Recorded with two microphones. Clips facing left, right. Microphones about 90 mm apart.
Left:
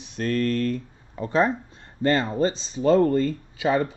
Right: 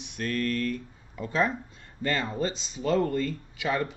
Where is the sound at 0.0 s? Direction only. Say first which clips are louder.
Left 5 dB; 35° left (ahead or behind).